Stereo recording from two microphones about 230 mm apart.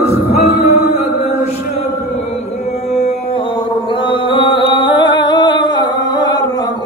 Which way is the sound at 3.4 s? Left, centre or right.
Left.